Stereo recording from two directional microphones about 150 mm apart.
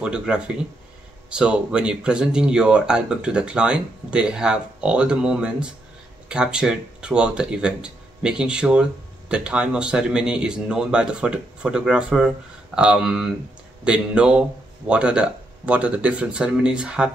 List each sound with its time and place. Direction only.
0.0 s speech: 5° right (ahead or behind)